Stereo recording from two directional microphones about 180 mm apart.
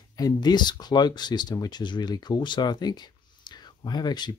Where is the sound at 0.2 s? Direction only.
25° left (ahead or behind).